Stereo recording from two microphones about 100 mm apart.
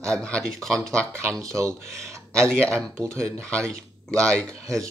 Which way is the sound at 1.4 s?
30° right (ahead or behind).